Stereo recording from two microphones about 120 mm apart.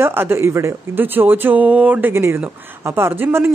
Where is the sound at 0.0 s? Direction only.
20° right (ahead or behind).